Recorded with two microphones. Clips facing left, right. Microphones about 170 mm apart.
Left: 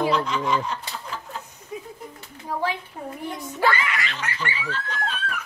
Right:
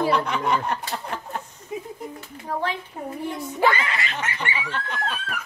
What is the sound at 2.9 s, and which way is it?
Speech, 5° right (ahead or behind).